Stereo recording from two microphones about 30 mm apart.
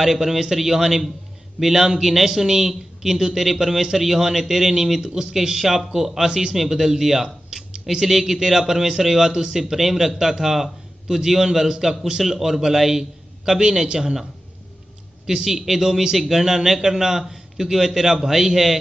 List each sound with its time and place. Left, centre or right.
0.0 s a man's voice: centre
13.5 s a man's voice: right
15.2 s a man's voice: centre
16.2 s a man's voice: centre